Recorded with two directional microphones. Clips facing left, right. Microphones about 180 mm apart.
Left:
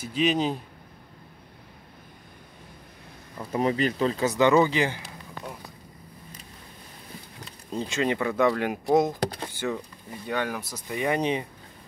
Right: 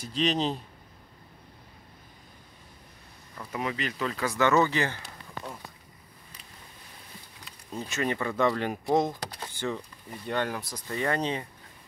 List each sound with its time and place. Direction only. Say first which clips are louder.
0.0 s speech: left 3 dB; 5° left (ahead or behind)
3.5 s speech: left 8 dB; 35° left (ahead or behind); by 5.0 s 15° left (ahead or behind)
7.7 s speech: left 4 dB; 20° left (ahead or behind)